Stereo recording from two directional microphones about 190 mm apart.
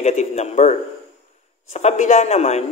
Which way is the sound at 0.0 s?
35° left (ahead or behind).